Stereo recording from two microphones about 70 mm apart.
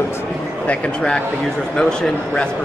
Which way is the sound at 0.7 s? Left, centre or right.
Centre.